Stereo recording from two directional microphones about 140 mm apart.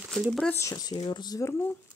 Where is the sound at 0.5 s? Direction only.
25° left (ahead or behind).